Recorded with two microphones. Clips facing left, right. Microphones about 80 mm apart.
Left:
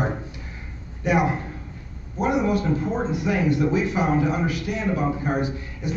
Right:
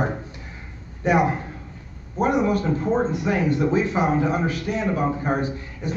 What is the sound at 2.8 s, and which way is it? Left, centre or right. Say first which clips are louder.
A man's voice: right 3 dB; right.